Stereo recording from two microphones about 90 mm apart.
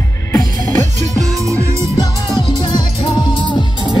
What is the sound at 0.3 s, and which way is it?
Music, 35° left (ahead or behind).